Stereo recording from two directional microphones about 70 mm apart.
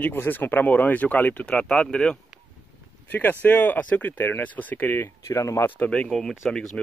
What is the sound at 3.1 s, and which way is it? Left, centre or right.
Speech, left.